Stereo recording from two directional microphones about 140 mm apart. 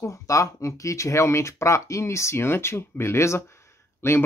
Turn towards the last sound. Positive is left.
turn(degrees=15)  # may be behind; listen again after turning